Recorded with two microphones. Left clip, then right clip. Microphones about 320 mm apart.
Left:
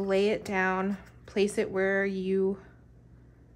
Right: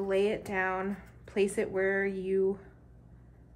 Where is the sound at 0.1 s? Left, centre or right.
Centre.